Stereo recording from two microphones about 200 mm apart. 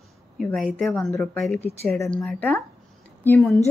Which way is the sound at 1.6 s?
30° left (ahead or behind).